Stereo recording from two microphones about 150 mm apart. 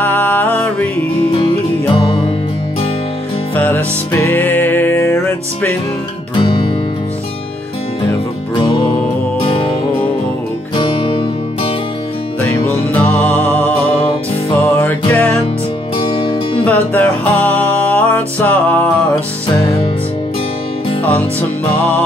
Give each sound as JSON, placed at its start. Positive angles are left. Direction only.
{"t": 0.0, "sound": "music", "side_deg": 10}
{"t": 2.0, "sound": "music", "side_deg": 35}
{"t": 3.5, "sound": "music", "side_deg": 15}
{"t": 6.3, "sound": "music", "side_deg": 35}
{"t": 9.4, "sound": "music", "side_deg": 35}
{"t": 10.8, "sound": "music", "side_deg": 30}
{"t": 12.4, "sound": "music", "side_deg": 10}
{"t": 14.8, "sound": "music", "side_deg": 10}
{"t": 16.1, "sound": "music", "side_deg": 35}
{"t": 16.6, "sound": "music", "side_deg": 10}
{"t": 21.0, "sound": "music", "side_deg": 10}